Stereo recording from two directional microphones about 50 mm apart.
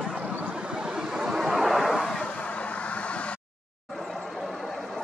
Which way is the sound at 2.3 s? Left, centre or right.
Left.